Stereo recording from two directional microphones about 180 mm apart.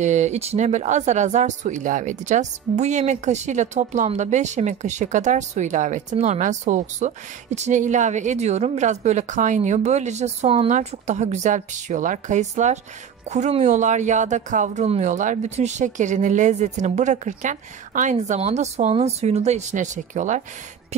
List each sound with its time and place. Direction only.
0.0 s speech: 40° right (ahead or behind)